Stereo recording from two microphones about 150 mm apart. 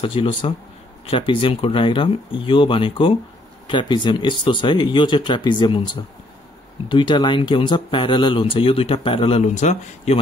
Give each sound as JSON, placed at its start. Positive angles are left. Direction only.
{"t": 0.0, "sound": "speech", "side_deg": 35}
{"t": 6.9, "sound": "speech", "side_deg": 30}